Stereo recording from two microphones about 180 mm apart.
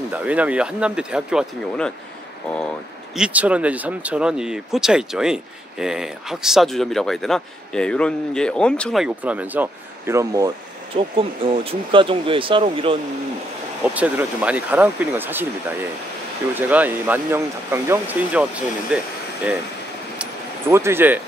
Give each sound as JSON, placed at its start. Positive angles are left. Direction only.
{"t": 0.1, "sound": "speech", "side_deg": -10}
{"t": 3.2, "sound": "speech", "side_deg": -5}
{"t": 11.0, "sound": "speech", "side_deg": -30}
{"t": 13.9, "sound": "speech", "side_deg": -10}
{"t": 16.5, "sound": "speech", "side_deg": -10}
{"t": 20.2, "sound": "a sound", "side_deg": -15}